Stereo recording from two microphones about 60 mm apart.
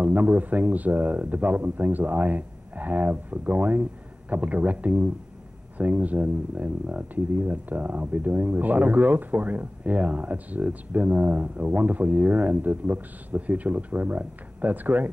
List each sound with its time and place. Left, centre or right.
0.0 s speech: right